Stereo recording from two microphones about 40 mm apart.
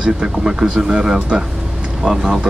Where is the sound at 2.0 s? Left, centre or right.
Centre.